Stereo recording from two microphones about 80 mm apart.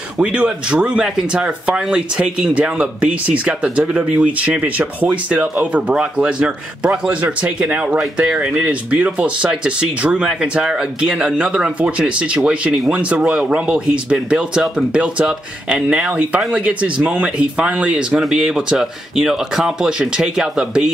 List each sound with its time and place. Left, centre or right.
0.2 s speech: centre